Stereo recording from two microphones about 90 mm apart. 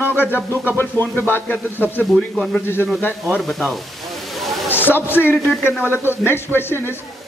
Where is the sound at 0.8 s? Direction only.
20° left (ahead or behind).